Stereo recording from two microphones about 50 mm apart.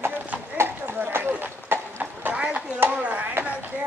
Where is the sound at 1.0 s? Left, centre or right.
Right.